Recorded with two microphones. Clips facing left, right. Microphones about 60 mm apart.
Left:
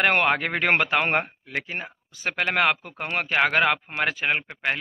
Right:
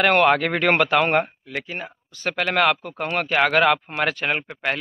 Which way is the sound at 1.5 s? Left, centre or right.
Left.